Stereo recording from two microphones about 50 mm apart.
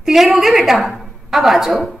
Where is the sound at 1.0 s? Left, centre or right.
Centre.